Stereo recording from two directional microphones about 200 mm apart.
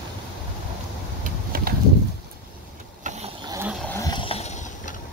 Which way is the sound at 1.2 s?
45° right (ahead or behind).